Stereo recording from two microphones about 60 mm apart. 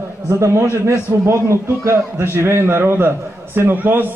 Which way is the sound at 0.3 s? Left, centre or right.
Right.